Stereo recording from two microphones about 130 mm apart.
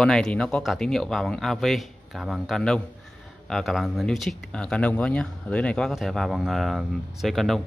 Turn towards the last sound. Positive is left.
turn(degrees=0)  # may be behind; listen again after turning